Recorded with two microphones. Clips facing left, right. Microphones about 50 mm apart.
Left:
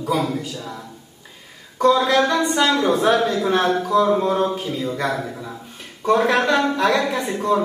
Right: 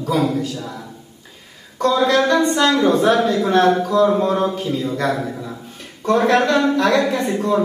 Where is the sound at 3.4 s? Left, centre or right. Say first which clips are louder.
Right 4 dB; centre.